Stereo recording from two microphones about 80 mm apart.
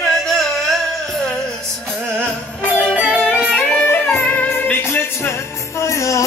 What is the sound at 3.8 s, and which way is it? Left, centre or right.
Music, left.